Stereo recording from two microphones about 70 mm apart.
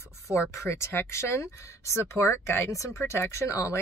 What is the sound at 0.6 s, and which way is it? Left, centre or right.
A woman's voice, left.